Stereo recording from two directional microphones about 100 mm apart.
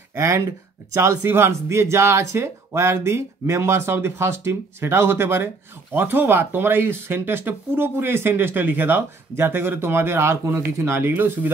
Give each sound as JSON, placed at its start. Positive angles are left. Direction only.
{"t": 0.2, "sound": "speech", "side_deg": -30}